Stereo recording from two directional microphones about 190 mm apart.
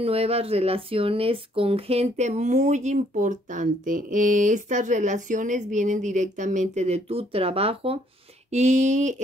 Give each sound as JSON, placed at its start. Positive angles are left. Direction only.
{"t": 0.0, "sound": "speech", "side_deg": -30}